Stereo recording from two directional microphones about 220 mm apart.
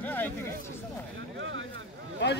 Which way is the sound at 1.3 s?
60° right (ahead or behind).